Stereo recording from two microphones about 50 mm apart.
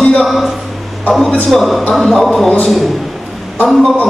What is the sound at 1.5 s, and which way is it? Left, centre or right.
A man's voice, centre.